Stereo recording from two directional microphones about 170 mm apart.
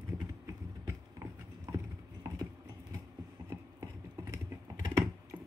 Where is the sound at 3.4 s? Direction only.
20° right (ahead or behind).